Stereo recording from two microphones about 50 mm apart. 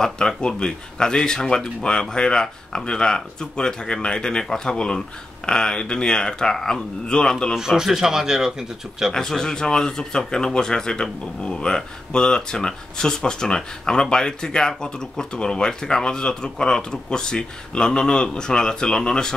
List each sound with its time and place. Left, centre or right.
0.0 s speech: centre
7.5 s speech: centre
9.1 s speech: centre